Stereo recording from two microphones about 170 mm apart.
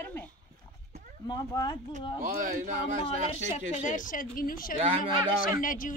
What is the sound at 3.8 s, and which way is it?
A woman's voice, 50° left (ahead or behind).